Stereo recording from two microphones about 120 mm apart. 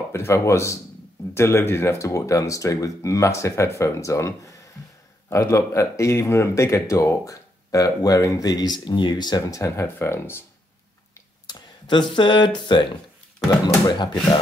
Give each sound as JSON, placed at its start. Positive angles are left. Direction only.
{"t": 0.1, "sound": "speech", "side_deg": 20}
{"t": 11.1, "sound": "a sound", "side_deg": 35}
{"t": 13.5, "sound": "speech", "side_deg": 35}